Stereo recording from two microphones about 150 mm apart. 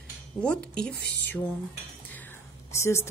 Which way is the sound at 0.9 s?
90° left.